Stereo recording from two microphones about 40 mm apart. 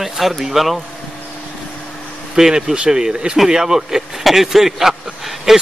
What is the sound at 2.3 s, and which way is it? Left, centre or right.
Speech, centre.